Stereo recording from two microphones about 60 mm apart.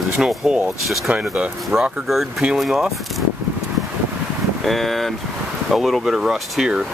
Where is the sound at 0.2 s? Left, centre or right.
Centre.